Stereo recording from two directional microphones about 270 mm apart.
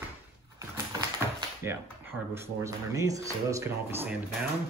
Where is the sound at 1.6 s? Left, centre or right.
Centre.